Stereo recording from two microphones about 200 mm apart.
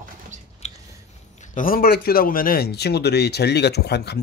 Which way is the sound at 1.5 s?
45° left (ahead or behind).